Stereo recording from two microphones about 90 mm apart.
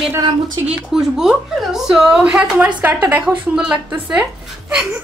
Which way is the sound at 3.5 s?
10° right (ahead or behind).